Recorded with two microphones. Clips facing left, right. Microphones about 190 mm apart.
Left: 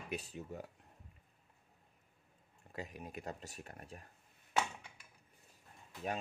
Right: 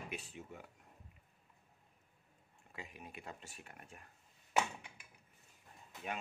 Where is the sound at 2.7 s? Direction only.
40° left (ahead or behind).